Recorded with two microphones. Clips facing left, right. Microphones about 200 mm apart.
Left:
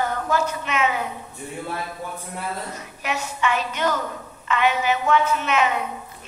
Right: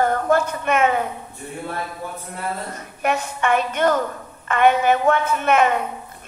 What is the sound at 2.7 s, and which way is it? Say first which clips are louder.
Speech: right 6 dB; 55° right (ahead or behind).